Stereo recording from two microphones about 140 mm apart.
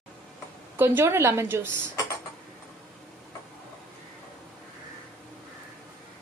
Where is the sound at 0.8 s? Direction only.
15° right (ahead or behind).